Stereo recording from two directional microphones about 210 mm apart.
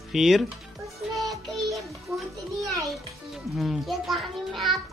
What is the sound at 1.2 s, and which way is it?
Music, centre (ahead or behind).